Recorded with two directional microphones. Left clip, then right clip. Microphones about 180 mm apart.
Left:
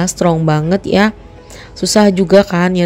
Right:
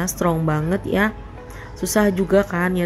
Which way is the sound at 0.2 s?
35° left (ahead or behind).